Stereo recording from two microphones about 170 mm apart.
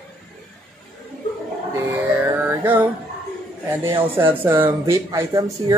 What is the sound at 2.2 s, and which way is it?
Music, 10° right (ahead or behind).